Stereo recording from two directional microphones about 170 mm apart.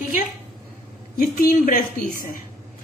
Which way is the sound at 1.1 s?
60° left (ahead or behind).